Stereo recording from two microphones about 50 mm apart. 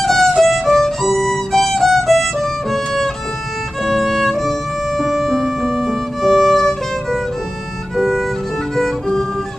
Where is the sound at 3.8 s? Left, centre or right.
Centre.